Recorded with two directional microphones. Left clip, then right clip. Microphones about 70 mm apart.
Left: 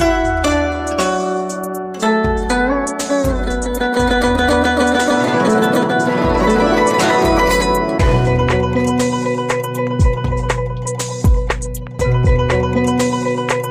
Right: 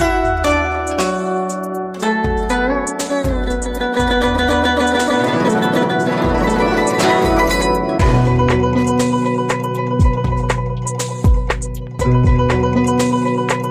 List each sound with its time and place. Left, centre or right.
0.2 s music: centre
2.2 s music: centre
4.1 s music: centre
5.9 s music: centre
12.9 s music: centre